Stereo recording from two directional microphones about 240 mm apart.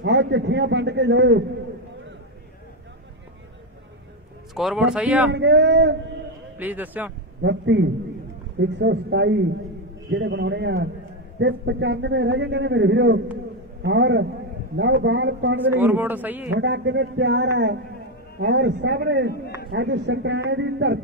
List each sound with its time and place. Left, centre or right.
0.0 s a man's voice: right
4.6 s speech: centre
5.3 s a man's voice: right
6.6 s speech: centre
7.4 s a man's voice: right
15.7 s speech: centre
16.5 s a man's voice: right